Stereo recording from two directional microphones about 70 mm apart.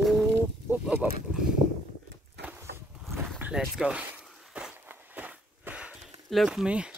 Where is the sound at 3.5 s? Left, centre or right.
Centre.